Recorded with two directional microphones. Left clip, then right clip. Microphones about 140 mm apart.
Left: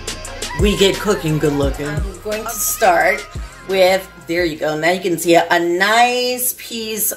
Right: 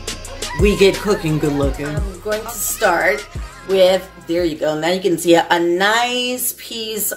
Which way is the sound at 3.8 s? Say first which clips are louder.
Even; 25° right (ahead or behind).